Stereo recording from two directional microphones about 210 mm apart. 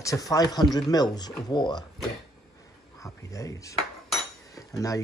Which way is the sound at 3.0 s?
15° left (ahead or behind).